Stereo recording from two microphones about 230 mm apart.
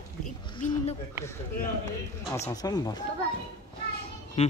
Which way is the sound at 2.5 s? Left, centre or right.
Centre.